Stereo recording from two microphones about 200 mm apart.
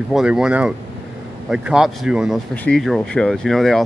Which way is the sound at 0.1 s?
5° right (ahead or behind).